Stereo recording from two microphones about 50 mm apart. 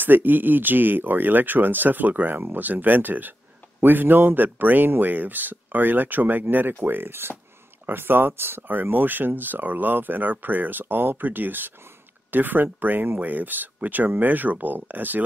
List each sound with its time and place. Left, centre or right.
0.0 s speech: right